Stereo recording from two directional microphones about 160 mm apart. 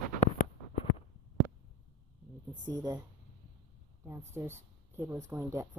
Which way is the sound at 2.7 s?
25° right (ahead or behind).